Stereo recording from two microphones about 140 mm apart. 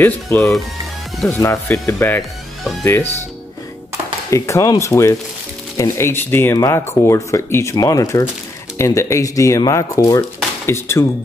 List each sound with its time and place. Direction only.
0.0 s speech: 15° left (ahead or behind)
4.3 s speech: 20° left (ahead or behind)